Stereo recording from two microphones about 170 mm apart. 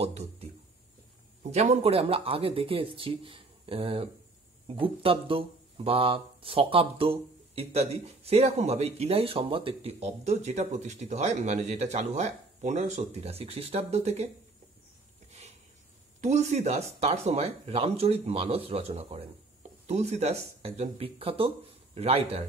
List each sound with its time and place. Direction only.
0.0 s a sound: 40° right (ahead or behind)
1.5 s speech: 40° right (ahead or behind)
16.2 s speech: 45° right (ahead or behind)